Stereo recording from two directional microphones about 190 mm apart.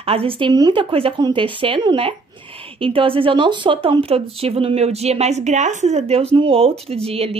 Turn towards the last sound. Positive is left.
turn(degrees=-30)  # may be behind; listen again after turning